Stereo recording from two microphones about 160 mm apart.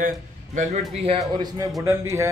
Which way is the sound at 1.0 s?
35° right (ahead or behind).